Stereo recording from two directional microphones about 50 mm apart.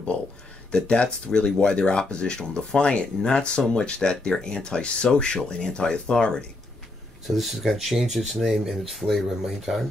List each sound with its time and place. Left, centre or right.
0.7 s speech: centre
7.2 s speech: centre